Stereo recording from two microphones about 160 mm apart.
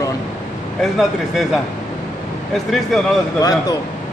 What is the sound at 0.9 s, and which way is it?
Speech, centre (ahead or behind).